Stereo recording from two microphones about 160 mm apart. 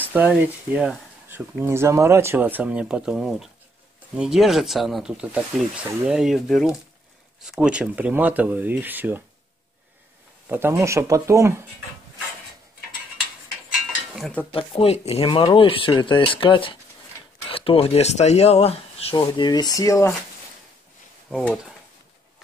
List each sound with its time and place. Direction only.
0.1 s speech: 10° right (ahead or behind)
10.5 s speech: 15° right (ahead or behind)
14.1 s speech: centre (ahead or behind)
14.5 s speech: 35° left (ahead or behind); by 20.1 s 20° left (ahead or behind)
21.3 s speech: 5° left (ahead or behind)